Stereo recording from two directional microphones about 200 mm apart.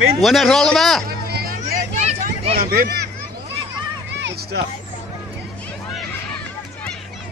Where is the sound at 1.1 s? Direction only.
50° right (ahead or behind).